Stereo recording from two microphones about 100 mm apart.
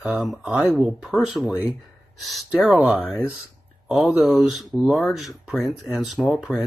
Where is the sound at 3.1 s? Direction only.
10° right (ahead or behind).